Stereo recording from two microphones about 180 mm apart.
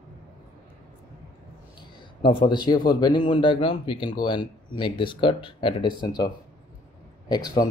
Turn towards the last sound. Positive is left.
turn(degrees=25)  # may be behind; listen again after turning